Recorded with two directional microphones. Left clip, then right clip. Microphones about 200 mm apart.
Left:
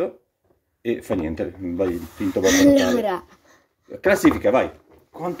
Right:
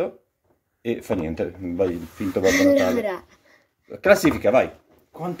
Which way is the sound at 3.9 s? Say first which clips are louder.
Right 1 dB; 20° right (ahead or behind).